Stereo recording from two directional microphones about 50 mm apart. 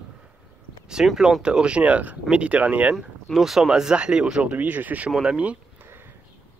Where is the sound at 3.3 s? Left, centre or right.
Centre.